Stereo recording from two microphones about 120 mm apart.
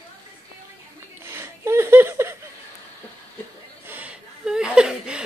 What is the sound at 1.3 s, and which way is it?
Speech, 20° right (ahead or behind).